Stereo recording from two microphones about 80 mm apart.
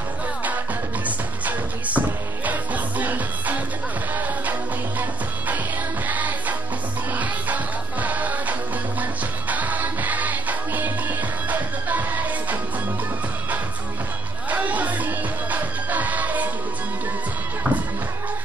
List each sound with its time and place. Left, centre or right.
1.0 s music: centre
6.0 s music: right
14.5 s music: centre
17.6 s music: centre